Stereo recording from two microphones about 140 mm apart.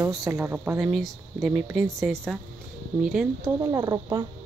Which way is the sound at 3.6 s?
30° right (ahead or behind).